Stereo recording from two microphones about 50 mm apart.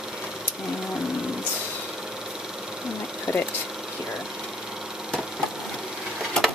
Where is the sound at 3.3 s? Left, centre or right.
Left.